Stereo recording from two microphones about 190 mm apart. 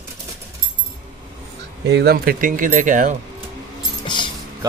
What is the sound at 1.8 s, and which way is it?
Speech, 60° right (ahead or behind).